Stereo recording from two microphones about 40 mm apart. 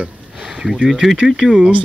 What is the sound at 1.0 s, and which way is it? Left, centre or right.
Speech, centre.